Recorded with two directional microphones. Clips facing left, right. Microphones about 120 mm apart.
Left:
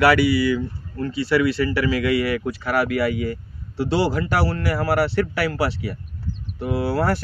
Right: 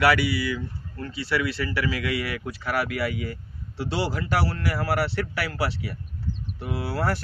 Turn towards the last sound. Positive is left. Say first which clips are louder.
# left 6 dB
turn(degrees=50)  # may be behind; listen again after turning